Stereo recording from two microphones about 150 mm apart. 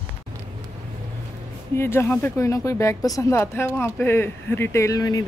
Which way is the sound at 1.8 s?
15° left (ahead or behind).